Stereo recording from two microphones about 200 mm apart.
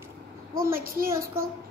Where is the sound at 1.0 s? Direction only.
15° right (ahead or behind).